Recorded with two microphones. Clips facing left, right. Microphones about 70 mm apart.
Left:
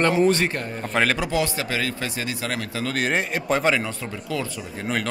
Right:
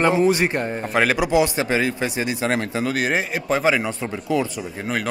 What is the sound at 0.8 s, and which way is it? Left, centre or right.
A man's voice, centre.